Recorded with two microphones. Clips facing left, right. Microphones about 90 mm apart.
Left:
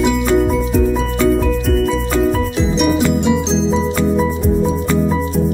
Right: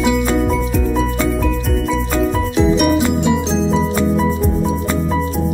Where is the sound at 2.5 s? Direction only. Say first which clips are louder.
Right 2 dB; 5° right (ahead or behind).